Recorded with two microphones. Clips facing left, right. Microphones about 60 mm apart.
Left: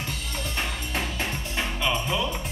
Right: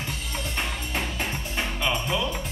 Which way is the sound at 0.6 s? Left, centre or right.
Centre.